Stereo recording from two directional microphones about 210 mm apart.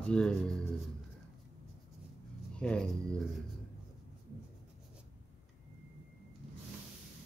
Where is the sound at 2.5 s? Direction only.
5° left (ahead or behind).